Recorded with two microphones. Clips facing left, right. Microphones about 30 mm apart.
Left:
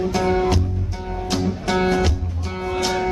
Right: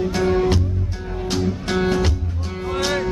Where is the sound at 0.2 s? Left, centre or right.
Centre.